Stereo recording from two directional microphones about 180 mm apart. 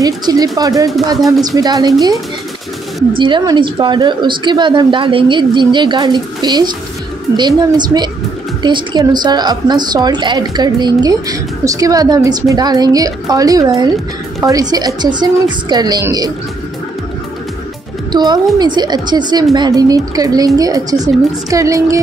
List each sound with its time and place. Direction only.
0.0 s speech: 20° right (ahead or behind)
18.1 s a woman's voice: 25° right (ahead or behind)